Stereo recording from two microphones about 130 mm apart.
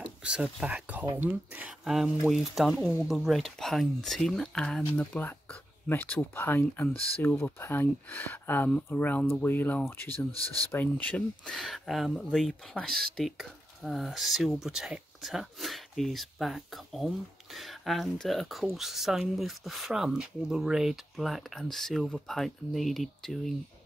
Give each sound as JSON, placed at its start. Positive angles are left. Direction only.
{"t": 0.0, "sound": "speech", "side_deg": -10}